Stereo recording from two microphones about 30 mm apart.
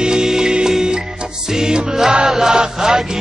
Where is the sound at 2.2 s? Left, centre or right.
Centre.